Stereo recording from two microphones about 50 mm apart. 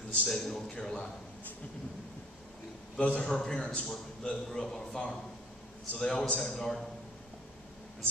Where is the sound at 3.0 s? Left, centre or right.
Left.